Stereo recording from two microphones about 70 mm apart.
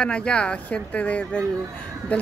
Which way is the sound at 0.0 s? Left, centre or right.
Centre.